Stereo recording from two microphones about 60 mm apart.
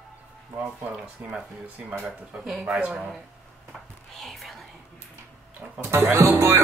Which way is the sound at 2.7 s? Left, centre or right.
Right.